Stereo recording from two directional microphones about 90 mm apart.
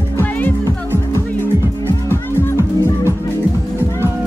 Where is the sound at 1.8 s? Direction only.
30° left (ahead or behind).